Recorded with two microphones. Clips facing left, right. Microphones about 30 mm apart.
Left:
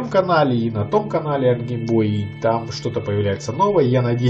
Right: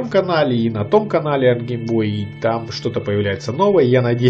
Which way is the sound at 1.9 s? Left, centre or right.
Right.